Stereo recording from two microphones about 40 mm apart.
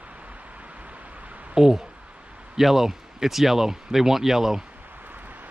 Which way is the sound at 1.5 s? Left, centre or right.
Centre.